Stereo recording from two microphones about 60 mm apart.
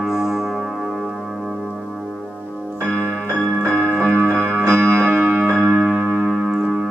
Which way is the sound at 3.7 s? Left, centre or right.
Centre.